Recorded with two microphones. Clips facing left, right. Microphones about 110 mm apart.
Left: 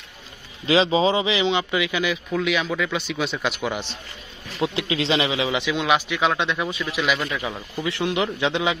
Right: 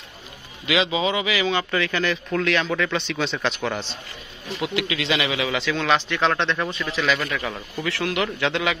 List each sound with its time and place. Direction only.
0.7 s a man's voice: 30° left (ahead or behind); by 4.0 s 10° left (ahead or behind)
4.6 s a man's voice: 30° left (ahead or behind)